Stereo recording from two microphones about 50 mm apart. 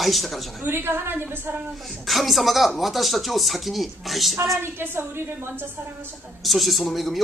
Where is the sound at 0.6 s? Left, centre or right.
Right.